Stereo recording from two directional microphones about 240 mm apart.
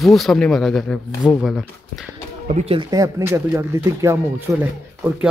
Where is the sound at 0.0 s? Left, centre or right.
Centre.